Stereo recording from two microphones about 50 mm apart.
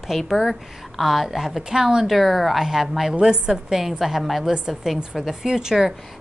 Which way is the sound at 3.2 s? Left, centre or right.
Centre.